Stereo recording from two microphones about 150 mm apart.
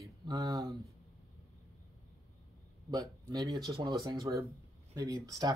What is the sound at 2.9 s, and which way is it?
Speech, 25° right (ahead or behind).